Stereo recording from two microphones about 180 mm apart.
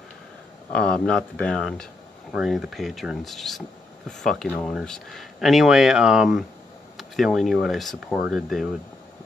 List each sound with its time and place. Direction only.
0.7 s speech: 5° left (ahead or behind)